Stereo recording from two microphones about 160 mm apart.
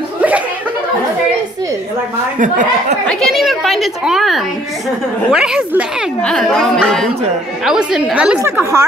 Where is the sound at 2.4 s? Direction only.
55° right (ahead or behind).